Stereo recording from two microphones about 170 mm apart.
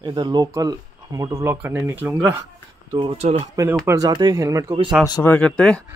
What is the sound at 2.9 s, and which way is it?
Speech, 30° right (ahead or behind).